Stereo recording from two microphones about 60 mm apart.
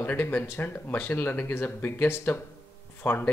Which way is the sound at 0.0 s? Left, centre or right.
Left.